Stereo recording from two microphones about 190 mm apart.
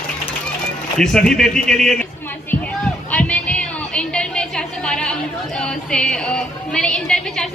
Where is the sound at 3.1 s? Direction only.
5° left (ahead or behind).